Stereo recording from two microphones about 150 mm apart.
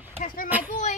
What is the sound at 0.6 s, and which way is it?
Speech, 55° left (ahead or behind).